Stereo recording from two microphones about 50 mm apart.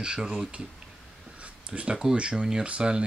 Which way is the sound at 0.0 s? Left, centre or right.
Centre.